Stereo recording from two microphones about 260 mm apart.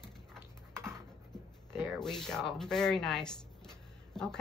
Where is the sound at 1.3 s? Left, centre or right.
Centre.